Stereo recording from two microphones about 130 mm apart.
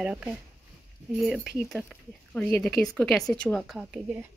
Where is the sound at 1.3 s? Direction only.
Centre (ahead or behind).